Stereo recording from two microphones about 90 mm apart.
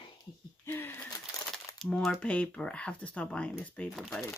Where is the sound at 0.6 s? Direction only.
25° left (ahead or behind).